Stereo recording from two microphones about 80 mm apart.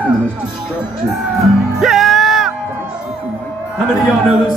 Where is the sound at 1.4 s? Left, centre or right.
Centre.